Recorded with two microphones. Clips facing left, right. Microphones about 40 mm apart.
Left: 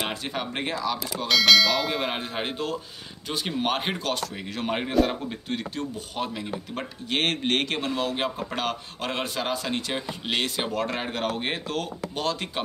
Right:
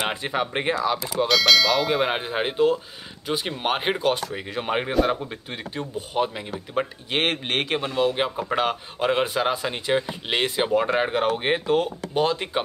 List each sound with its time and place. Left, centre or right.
0.0 s speech: centre
1.1 s speech: centre